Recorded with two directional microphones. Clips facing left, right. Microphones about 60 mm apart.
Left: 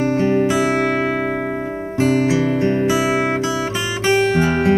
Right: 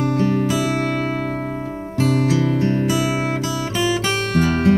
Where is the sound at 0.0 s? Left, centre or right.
Left.